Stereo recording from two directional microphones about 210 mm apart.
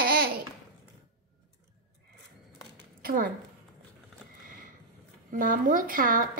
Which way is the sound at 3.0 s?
45° right (ahead or behind).